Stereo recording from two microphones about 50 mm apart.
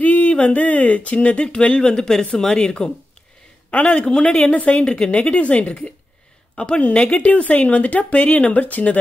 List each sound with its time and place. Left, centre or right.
0.0 s speech: left